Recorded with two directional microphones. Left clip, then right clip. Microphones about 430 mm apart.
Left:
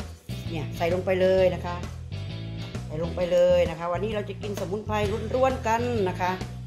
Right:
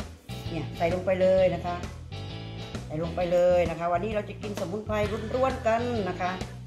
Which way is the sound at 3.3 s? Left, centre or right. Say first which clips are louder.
Left 2 dB; centre.